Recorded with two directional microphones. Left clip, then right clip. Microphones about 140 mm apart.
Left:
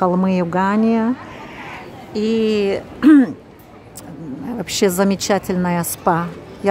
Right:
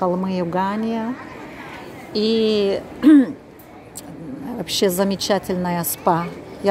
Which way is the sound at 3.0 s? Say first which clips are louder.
Left 2 dB; 25° left (ahead or behind).